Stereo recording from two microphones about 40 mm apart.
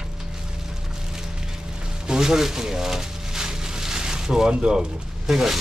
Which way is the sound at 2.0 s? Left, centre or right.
Centre.